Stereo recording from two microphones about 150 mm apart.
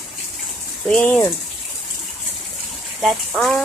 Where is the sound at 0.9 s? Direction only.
10° left (ahead or behind).